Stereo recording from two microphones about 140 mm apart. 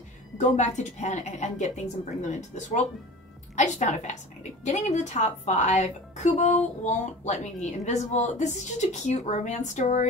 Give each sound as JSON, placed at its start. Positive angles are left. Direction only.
{"t": 0.4, "sound": "a woman's voice", "side_deg": 55}